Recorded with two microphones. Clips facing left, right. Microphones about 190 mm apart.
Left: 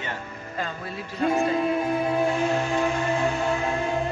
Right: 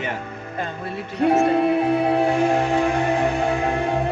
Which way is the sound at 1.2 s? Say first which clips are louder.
Right 5 dB; 65° right (ahead or behind).